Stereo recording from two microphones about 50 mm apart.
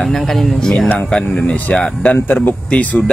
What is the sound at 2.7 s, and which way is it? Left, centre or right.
Speech, left.